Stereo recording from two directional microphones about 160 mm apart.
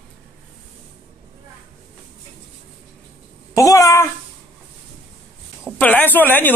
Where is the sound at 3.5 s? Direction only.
20° left (ahead or behind).